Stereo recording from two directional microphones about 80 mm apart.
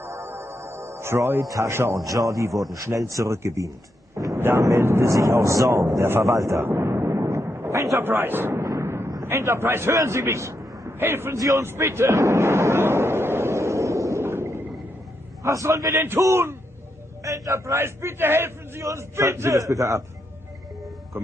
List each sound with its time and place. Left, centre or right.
0.0 s music: right
1.4 s a man's voice: right
1.7 s a man's voice: right
2.0 s a man's voice: right
4.4 s a man's voice: right
6.2 s a man's voice: right
6.6 s a sound: right
8.0 s speech: right
8.6 s artillery fire: right
9.2 s a man's voice: right
11.3 s a man's voice: right
11.6 s a sound: right
15.4 s a man's voice: right